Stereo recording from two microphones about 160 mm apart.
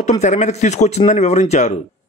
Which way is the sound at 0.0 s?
45° left (ahead or behind).